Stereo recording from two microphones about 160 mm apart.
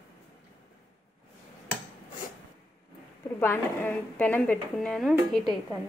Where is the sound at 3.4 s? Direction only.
10° left (ahead or behind).